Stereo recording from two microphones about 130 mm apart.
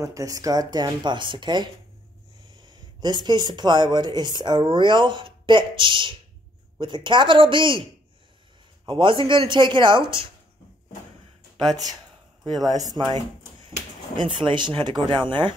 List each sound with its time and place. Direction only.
0.0 s speech: 25° right (ahead or behind)
8.8 s speech: 40° right (ahead or behind)
12.5 s speech: 30° right (ahead or behind)
13.7 s a sound: 40° right (ahead or behind)
14.4 s speech: 40° right (ahead or behind)